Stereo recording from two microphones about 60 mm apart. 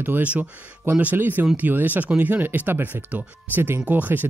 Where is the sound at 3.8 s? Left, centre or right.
Right.